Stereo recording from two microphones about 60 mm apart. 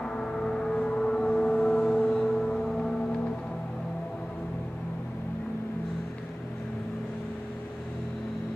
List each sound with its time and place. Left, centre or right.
0.0 s gong: centre